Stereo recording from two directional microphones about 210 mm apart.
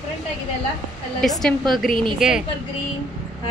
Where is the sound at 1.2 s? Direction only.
Centre (ahead or behind).